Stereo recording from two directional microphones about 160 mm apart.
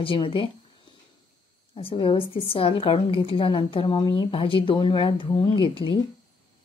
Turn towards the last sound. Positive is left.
turn(degrees=35)  # may be behind; listen again after turning